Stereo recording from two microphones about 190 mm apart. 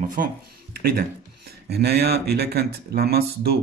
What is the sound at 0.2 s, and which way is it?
Speech, 45° right (ahead or behind).